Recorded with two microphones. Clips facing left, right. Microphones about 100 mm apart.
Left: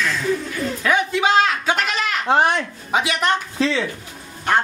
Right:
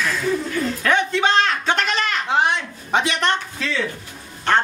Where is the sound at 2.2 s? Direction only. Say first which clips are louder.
Left 4 dB; 45° left (ahead or behind).